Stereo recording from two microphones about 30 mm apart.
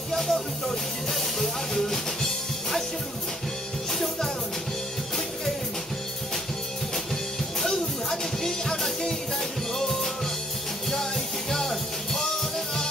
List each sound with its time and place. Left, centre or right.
0.1 s music: centre
7.6 s music: centre
11.5 s music: centre